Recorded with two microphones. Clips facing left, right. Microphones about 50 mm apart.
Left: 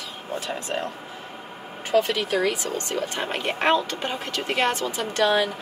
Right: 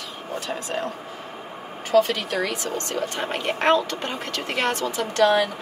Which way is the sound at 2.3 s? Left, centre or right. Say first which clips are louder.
Left 2 dB; centre.